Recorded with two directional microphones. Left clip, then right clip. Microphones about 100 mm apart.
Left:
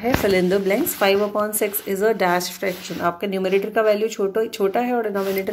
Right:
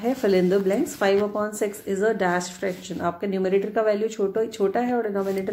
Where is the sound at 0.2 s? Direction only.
30° left (ahead or behind).